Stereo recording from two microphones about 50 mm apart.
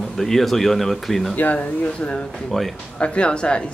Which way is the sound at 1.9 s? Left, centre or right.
Left.